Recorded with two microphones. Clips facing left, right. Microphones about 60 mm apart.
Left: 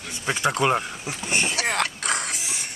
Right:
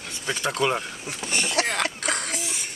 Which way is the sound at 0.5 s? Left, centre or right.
Left.